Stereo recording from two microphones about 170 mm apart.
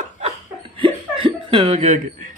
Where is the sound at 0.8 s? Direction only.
30° right (ahead or behind).